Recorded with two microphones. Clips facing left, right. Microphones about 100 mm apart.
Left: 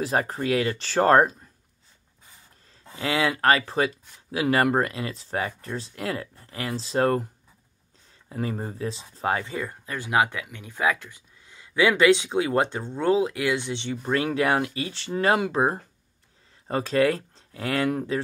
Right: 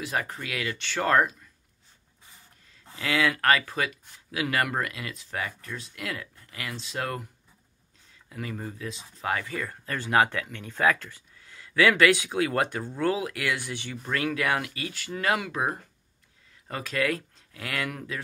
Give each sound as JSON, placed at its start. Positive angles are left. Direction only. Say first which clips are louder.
{"t": 0.0, "sound": "speech", "louder": "left 6 dB", "side_deg": 35}
{"t": 2.7, "sound": "speech", "louder": "left 2 dB", "side_deg": 30}
{"t": 8.3, "sound": "speech", "louder": "left 6 dB", "side_deg": 35}